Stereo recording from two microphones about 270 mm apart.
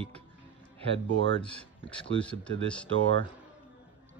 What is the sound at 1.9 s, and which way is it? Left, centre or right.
Speech, centre.